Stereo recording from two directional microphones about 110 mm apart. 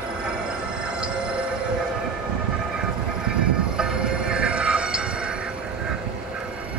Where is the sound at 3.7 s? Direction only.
5° right (ahead or behind).